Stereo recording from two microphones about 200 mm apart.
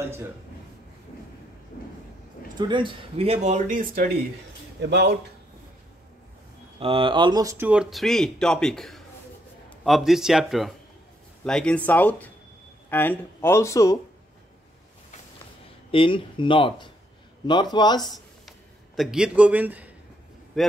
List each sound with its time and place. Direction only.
2.5 s speech: 20° right (ahead or behind); by 4.1 s 40° right (ahead or behind)
4.8 s speech: 55° right (ahead or behind)
6.8 s a man's voice: 25° right (ahead or behind); by 13.9 s 15° left (ahead or behind)
15.9 s speech: 25° left (ahead or behind)
18.0 s a sound: centre (ahead or behind)
18.9 s a man's voice: 5° right (ahead or behind)